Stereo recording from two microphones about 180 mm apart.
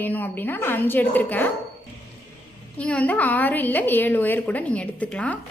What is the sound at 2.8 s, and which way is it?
A woman's voice, 10° left (ahead or behind).